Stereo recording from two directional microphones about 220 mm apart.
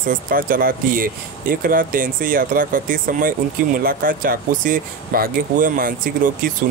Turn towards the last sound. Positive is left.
turn(degrees=-40)  # may be behind; listen again after turning